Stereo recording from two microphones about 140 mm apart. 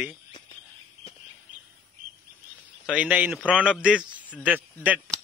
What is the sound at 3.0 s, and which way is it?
A man's voice, 10° right (ahead or behind).